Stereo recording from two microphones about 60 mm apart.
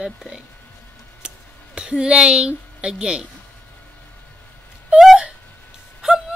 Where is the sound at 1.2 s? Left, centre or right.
Centre.